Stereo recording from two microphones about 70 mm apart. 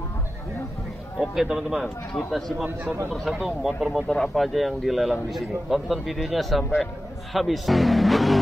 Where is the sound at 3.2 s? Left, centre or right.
Centre.